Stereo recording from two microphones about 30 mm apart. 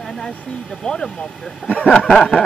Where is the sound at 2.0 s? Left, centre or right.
Left.